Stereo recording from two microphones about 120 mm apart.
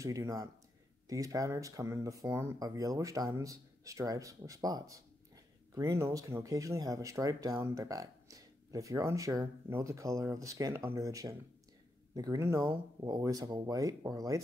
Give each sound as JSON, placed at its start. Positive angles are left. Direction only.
{"t": 0.0, "sound": "speech", "side_deg": -30}